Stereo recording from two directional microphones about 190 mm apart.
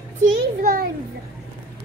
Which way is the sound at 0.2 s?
45° right (ahead or behind).